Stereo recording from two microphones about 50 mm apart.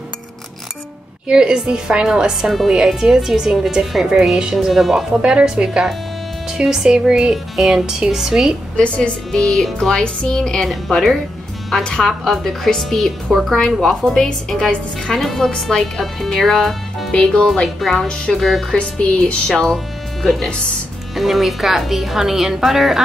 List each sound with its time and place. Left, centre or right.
1.2 s a woman's voice: centre
2.4 s a woman's voice: centre
5.2 s a woman's voice: centre
8.7 s speech: left
9.3 s a woman's voice: centre
17.1 s a woman's voice: centre
17.7 s a woman's voice: centre
18.7 s speech: left
19.6 s a woman's voice: centre